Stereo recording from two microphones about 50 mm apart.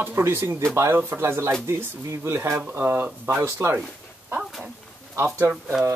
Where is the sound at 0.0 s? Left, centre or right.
Right.